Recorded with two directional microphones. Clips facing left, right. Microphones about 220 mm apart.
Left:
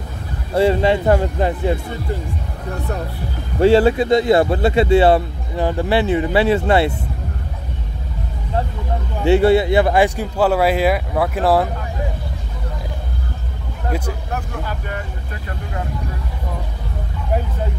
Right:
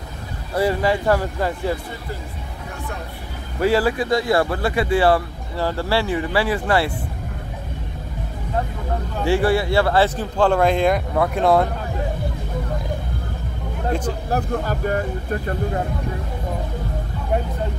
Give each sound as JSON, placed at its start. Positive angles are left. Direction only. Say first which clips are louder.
{"t": 0.6, "sound": "a man's voice", "louder": "left 4 dB", "side_deg": 25}
{"t": 3.5, "sound": "a man's voice", "louder": "left 6 dB", "side_deg": 25}
{"t": 9.2, "sound": "speech", "louder": "left 6 dB", "side_deg": 25}
{"t": 14.3, "sound": "speech", "louder": "right 5 dB", "side_deg": -40}